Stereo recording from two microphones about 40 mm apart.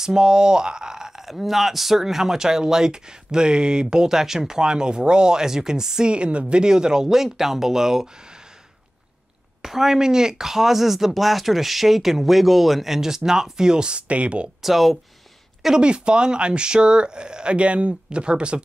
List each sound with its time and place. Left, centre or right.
0.0 s speech: centre
9.6 s speech: centre
14.0 s speech: right
14.6 s speech: centre
15.8 s speech: right